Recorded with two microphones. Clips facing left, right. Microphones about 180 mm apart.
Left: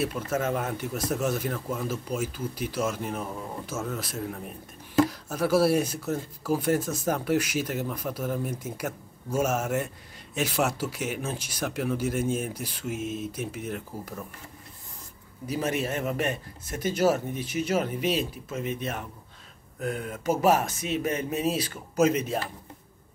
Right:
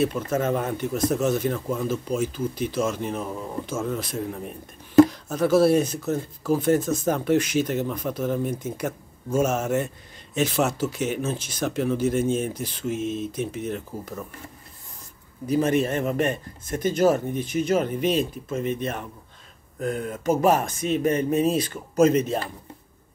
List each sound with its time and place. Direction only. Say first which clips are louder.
0.0 s speech: right 4 dB; 5° left (ahead or behind)
15.6 s speech: right 4 dB; 5° left (ahead or behind)
20.2 s speech: right 2 dB; 5° left (ahead or behind)